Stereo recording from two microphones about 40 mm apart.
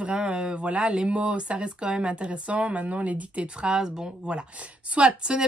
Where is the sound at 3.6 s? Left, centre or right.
Centre.